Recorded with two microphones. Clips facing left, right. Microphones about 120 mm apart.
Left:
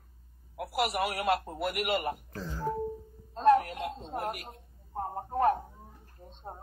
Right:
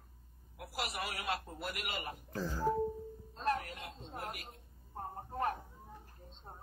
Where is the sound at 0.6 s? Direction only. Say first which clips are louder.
Left 10 dB; 60° left (ahead or behind).